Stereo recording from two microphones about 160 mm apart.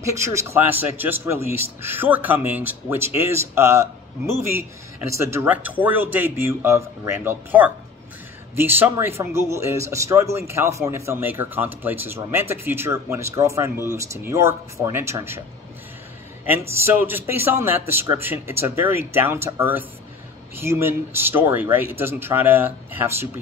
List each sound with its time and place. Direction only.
0.1 s speech: 20° right (ahead or behind)
16.5 s speech: 15° right (ahead or behind)